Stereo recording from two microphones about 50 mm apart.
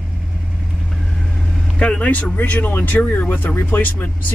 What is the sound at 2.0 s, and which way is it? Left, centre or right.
Speech, left.